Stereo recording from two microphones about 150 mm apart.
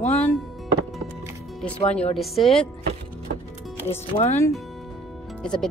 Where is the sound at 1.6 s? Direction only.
10° left (ahead or behind).